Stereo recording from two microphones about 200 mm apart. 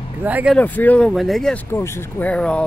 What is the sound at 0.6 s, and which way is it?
Speech, 10° left (ahead or behind).